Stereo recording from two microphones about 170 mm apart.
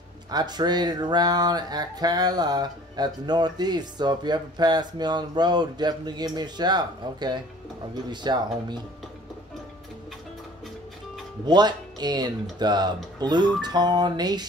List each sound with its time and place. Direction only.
0.3 s speech: 25° right (ahead or behind)
11.4 s speech: 25° right (ahead or behind)